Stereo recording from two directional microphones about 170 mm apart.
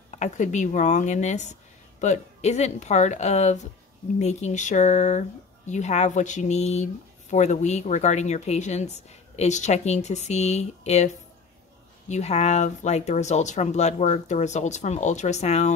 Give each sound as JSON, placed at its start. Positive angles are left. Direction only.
{"t": 0.1, "sound": "speech", "side_deg": 45}
{"t": 12.1, "sound": "speech", "side_deg": 40}